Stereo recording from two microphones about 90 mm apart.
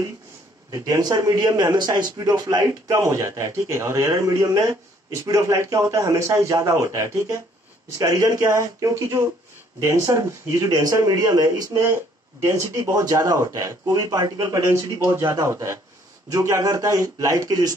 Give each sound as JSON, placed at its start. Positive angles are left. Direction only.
{"t": 0.7, "sound": "a man's voice", "side_deg": -40}
{"t": 11.8, "sound": "a man's voice", "side_deg": -30}
{"t": 14.6, "sound": "a man's voice", "side_deg": -30}